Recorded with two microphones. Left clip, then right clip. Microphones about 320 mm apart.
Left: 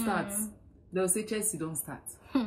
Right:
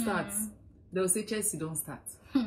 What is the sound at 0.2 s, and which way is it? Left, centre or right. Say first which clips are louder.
Speech: left 1 dB; left.